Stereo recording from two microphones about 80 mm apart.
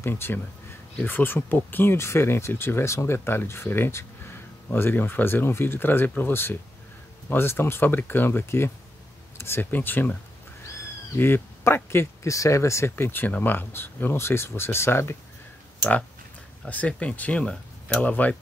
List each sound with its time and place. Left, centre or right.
0.0 s speech: left
11.1 s speech: left
16.6 s speech: centre